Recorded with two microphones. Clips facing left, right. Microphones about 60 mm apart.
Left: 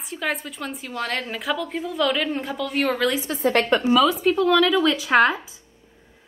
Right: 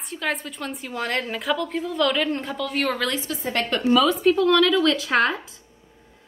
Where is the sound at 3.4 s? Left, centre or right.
Left.